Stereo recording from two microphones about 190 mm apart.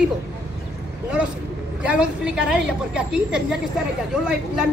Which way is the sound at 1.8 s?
5° right (ahead or behind).